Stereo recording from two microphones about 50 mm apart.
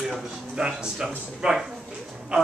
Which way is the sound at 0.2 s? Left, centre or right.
Centre.